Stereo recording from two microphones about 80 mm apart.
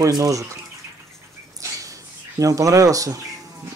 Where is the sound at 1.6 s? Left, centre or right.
Right.